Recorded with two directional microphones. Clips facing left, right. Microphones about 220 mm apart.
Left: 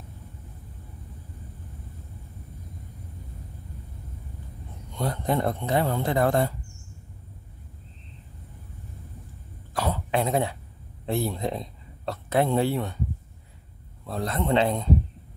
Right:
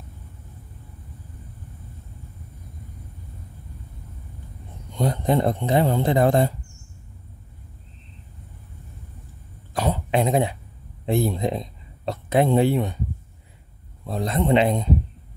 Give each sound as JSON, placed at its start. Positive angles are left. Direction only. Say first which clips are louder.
{"t": 4.9, "sound": "speech", "louder": "right 5 dB", "side_deg": -20}
{"t": 9.8, "sound": "cough", "louder": "right 4 dB", "side_deg": -20}
{"t": 11.1, "sound": "speech", "louder": "right 5 dB", "side_deg": -15}
{"t": 14.0, "sound": "speech", "louder": "right 4 dB", "side_deg": -15}